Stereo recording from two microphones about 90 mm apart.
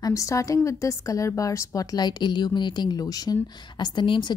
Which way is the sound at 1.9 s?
55° left (ahead or behind).